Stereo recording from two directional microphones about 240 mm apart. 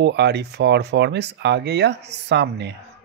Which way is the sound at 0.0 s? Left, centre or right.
Right.